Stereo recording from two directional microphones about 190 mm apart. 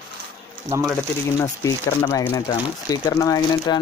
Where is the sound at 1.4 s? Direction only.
15° left (ahead or behind).